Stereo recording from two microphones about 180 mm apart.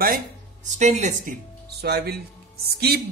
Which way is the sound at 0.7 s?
40° right (ahead or behind).